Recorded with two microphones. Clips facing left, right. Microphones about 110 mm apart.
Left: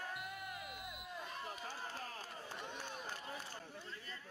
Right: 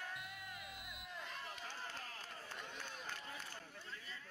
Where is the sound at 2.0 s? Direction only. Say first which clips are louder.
Left 4 dB; 35° left (ahead or behind).